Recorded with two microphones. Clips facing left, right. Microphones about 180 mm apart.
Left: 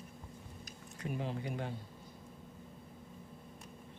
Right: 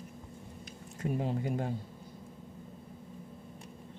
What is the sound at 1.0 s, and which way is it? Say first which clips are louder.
Speech: right 6 dB; 35° right (ahead or behind).